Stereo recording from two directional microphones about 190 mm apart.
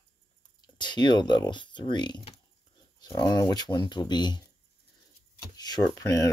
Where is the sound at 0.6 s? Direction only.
25° left (ahead or behind).